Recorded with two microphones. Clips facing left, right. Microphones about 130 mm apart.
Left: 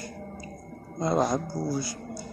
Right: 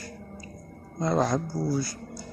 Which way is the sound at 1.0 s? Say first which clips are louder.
Even; 15° left (ahead or behind).